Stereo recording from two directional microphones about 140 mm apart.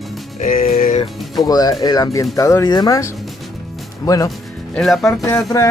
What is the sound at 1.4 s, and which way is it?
Speech, 25° left (ahead or behind).